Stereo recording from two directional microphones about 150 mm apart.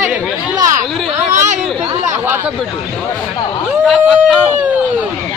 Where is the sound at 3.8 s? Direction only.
5° left (ahead or behind).